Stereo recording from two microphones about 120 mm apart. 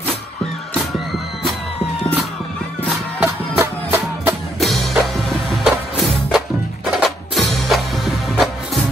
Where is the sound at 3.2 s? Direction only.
20° right (ahead or behind).